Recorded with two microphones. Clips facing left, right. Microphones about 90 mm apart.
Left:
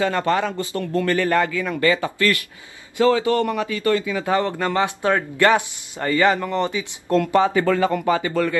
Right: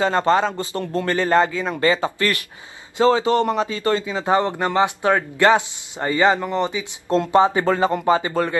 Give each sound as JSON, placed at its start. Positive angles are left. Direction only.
{"t": 0.0, "sound": "a man's voice", "side_deg": -25}